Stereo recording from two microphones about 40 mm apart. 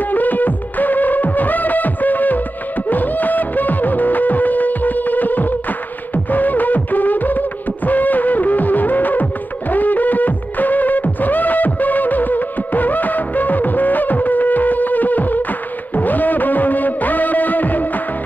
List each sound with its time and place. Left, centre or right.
0.0 s music: left